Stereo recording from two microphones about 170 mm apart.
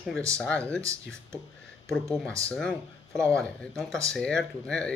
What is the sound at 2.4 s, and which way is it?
Speech, 5° left (ahead or behind).